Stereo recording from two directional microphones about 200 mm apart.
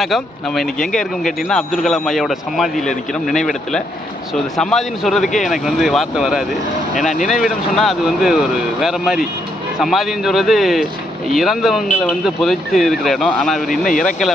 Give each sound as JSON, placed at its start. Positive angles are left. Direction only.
{"t": 0.0, "sound": "speech", "side_deg": 0}
{"t": 13.7, "sound": "speech", "side_deg": 40}